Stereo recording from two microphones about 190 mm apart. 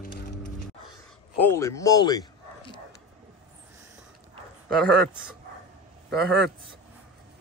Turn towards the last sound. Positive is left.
turn(degrees=0)  # may be behind; listen again after turning